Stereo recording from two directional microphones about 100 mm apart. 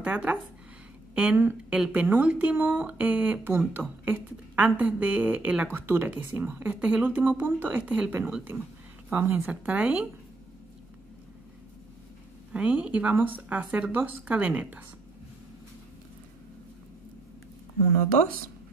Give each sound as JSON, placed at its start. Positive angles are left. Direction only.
{"t": 0.0, "sound": "speech", "side_deg": -15}
{"t": 9.1, "sound": "speech", "side_deg": -20}
{"t": 12.5, "sound": "speech", "side_deg": -15}